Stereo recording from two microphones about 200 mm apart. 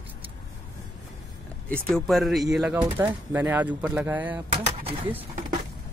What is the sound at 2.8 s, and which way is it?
Speech, 20° right (ahead or behind).